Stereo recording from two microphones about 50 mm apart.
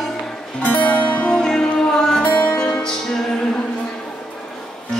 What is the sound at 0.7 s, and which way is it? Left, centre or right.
Music, left.